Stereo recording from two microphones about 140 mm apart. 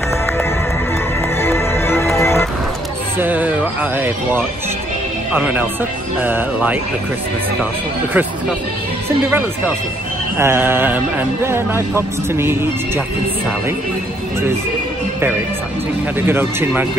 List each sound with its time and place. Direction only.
1.4 s music: 20° left (ahead or behind)
3.2 s speech: 10° right (ahead or behind)
10.3 s speech: 20° right (ahead or behind)
16.3 s speech: 15° right (ahead or behind)